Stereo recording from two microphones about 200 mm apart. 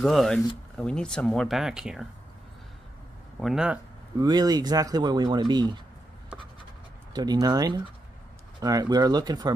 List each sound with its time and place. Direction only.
0.0 s speech: centre (ahead or behind)
3.3 s speech: centre (ahead or behind)
4.2 s speech: 20° right (ahead or behind)
7.2 s speech: 20° right (ahead or behind)